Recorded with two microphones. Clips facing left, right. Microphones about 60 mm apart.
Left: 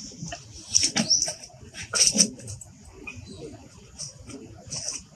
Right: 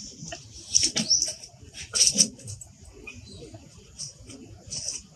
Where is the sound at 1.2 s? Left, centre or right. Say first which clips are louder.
Left 4 dB; left.